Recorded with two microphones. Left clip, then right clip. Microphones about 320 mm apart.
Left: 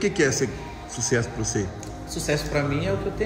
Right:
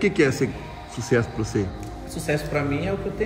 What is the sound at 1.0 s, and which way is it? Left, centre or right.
Speech, right.